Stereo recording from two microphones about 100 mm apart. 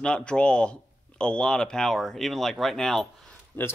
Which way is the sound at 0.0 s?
10° left (ahead or behind).